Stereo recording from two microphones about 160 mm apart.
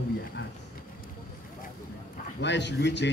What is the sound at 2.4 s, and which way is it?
Speech, 90° left.